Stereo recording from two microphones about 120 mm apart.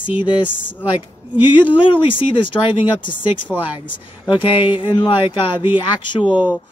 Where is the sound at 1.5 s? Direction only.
45° left (ahead or behind).